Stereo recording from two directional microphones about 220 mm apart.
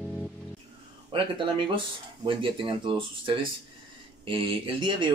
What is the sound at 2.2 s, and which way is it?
Speech, 25° right (ahead or behind).